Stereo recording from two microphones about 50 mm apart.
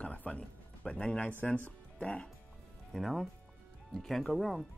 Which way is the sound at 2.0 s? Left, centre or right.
Left.